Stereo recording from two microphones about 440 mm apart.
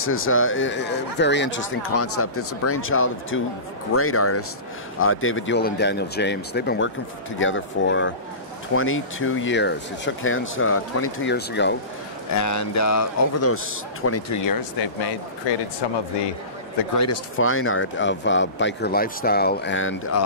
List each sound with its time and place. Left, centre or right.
0.0 s speech: left
12.4 s speech: left
16.9 s speech: left